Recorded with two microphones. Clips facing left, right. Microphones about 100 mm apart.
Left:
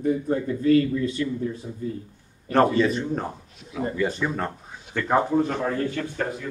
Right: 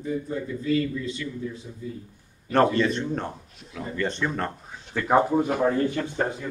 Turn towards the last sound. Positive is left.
turn(degrees=-25)  # may be behind; listen again after turning